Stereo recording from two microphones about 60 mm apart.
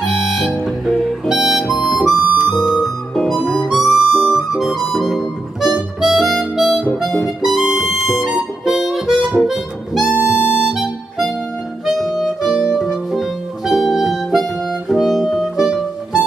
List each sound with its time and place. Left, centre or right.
0.0 s music: centre
1.3 s harmonica: centre
3.3 s music: centre
3.5 s harmonica: centre
4.4 s harmonica: centre
13.7 s music: centre